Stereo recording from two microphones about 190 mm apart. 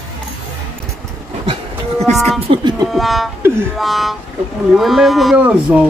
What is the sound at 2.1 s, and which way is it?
Speech, centre (ahead or behind).